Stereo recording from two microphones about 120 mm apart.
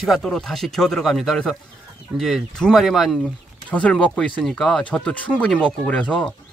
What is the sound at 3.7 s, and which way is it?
Speech, 10° left (ahead or behind).